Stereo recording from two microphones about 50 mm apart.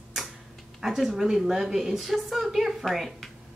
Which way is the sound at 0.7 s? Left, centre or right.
Centre.